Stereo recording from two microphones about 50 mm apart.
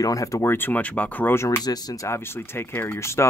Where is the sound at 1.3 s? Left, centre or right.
Left.